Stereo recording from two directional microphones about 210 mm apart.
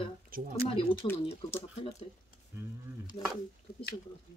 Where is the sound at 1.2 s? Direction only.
30° left (ahead or behind).